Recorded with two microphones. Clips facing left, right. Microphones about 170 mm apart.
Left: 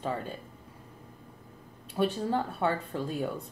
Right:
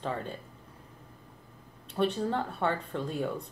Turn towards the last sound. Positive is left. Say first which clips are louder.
# even
turn(degrees=5)  # may be behind; listen again after turning